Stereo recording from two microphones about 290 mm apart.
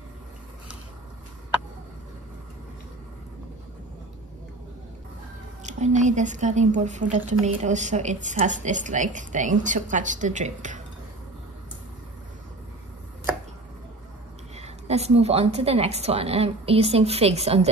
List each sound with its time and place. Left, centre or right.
5.6 s a woman's voice: right
14.5 s a woman's voice: right